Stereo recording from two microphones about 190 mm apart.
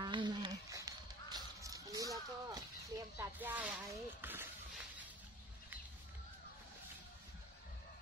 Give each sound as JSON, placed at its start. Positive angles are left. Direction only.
{"t": 0.0, "sound": "honk", "side_deg": -25}
{"t": 3.2, "sound": "speech", "side_deg": -10}